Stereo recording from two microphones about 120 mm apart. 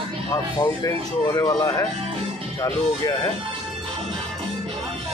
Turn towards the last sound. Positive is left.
turn(degrees=25)  # may be behind; listen again after turning